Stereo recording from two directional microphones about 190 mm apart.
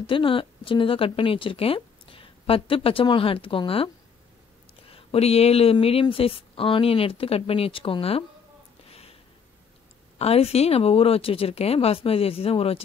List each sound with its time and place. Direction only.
0.0 s a woman's voice: 25° left (ahead or behind)
10.1 s speech: 30° left (ahead or behind)